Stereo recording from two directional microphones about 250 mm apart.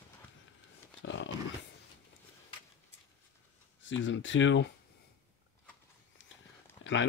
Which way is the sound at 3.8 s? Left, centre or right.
Left.